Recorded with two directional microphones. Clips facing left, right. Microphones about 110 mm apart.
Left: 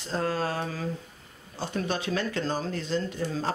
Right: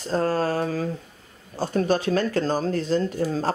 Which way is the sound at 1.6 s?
40° right (ahead or behind).